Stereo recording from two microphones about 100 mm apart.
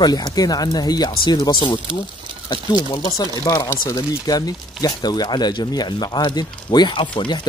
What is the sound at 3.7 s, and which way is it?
Speech, 35° left (ahead or behind).